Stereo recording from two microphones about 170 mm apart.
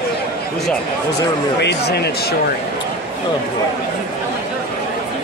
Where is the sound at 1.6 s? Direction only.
80° left.